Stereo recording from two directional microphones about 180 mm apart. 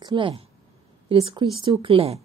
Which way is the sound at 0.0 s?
30° right (ahead or behind).